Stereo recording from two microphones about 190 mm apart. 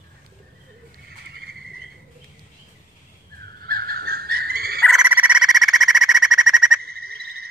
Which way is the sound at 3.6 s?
50° right (ahead or behind).